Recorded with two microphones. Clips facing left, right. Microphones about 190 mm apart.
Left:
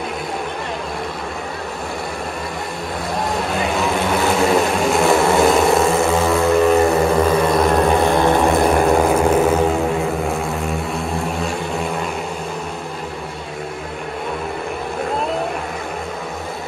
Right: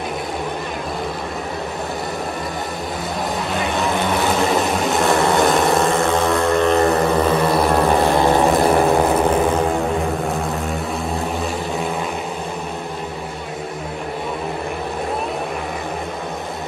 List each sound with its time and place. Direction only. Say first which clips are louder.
3.5 s vehicle: even; centre (ahead or behind)
7.4 s a sound: left 1 dB; centre (ahead or behind)
8.1 s vehicle: even; 15° right (ahead or behind)
8.7 s vehicle: left 1 dB; 5° right (ahead or behind)
10.0 s a sound: left 1 dB; centre (ahead or behind)
11.3 s vehicle: even; centre (ahead or behind)